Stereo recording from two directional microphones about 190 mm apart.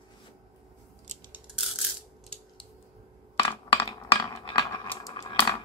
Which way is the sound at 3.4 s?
30° left (ahead or behind).